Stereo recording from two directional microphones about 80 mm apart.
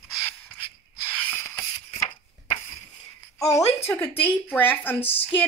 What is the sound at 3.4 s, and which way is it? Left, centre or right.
Speech, left.